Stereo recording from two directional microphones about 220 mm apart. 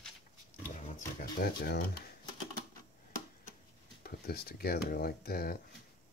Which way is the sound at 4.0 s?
45° left (ahead or behind).